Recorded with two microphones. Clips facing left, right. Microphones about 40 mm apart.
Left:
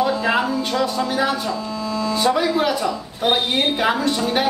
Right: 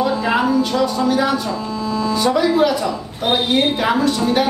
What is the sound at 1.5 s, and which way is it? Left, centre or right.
Mains hum, right.